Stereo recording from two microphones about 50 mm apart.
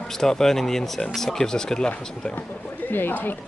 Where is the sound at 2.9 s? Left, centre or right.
Left.